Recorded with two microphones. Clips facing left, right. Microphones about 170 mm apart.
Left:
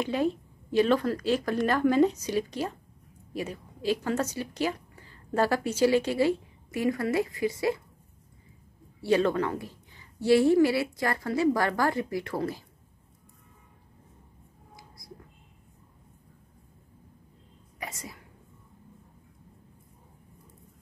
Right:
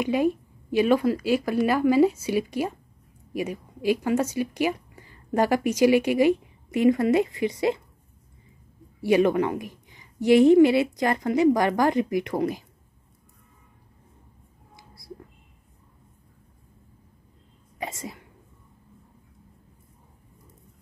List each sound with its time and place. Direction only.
0.0 s a woman's voice: 10° right (ahead or behind)
9.0 s a woman's voice: 15° right (ahead or behind)
14.8 s a sound: 30° right (ahead or behind)
17.7 s whispering: 25° right (ahead or behind)